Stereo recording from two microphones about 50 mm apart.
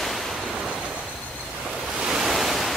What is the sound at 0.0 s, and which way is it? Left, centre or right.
Waves, centre.